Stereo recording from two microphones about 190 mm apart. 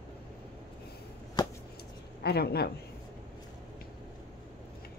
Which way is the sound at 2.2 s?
55° left (ahead or behind).